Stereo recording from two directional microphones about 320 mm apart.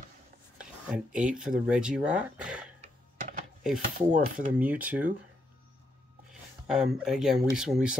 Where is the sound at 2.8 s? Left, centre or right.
Right.